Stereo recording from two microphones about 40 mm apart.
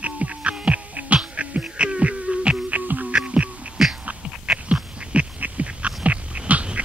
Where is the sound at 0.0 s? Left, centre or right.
Right.